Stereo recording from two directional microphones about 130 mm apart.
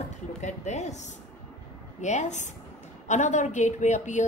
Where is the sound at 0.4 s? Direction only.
65° left (ahead or behind).